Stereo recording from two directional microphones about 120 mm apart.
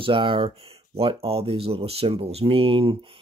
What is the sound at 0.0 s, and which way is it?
Speech, 45° right (ahead or behind).